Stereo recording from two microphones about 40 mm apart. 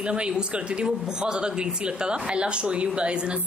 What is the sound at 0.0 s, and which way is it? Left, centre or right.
Speech, right.